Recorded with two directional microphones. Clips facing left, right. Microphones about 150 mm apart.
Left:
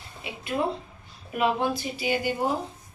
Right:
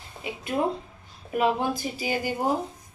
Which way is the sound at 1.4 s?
40° right (ahead or behind).